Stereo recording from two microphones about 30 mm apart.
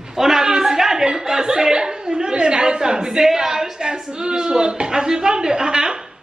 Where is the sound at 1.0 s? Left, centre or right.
Centre.